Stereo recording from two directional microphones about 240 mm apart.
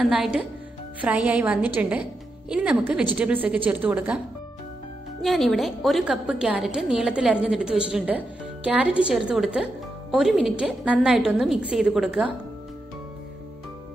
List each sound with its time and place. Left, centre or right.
0.0 s a woman's voice: centre
5.2 s a woman's voice: centre